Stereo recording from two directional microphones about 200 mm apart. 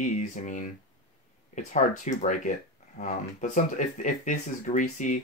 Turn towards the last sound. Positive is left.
turn(degrees=40)  # may be behind; listen again after turning